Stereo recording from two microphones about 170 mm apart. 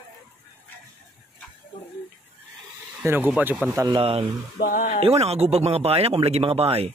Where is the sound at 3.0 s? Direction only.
10° right (ahead or behind).